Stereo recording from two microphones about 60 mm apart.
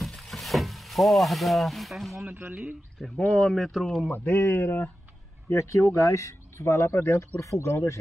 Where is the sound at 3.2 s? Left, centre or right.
Left.